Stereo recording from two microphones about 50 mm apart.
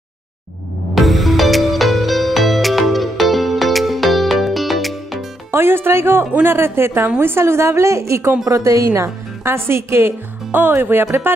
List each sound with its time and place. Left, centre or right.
0.9 s music: centre
5.5 s a woman's voice: right
8.5 s a woman's voice: right
10.5 s speech: right